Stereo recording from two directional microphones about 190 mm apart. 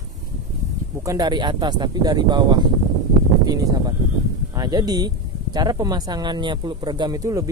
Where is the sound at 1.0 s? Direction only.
20° right (ahead or behind).